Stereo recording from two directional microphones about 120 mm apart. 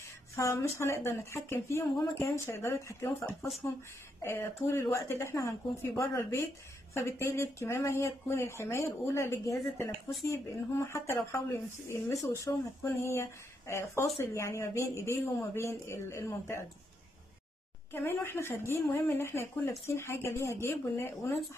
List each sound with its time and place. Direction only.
0.4 s speech: 25° left (ahead or behind)
17.9 s speech: 20° left (ahead or behind)